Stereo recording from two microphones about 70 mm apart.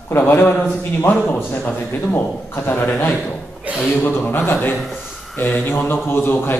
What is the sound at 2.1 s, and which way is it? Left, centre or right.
A man's voice, left.